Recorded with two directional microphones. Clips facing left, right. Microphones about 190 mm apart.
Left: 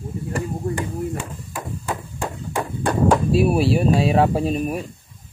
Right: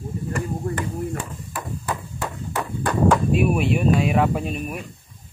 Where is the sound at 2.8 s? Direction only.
30° left (ahead or behind).